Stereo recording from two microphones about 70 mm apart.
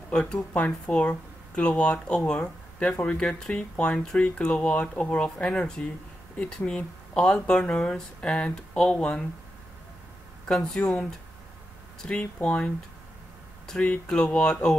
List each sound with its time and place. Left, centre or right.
0.1 s speech: centre
10.5 s speech: centre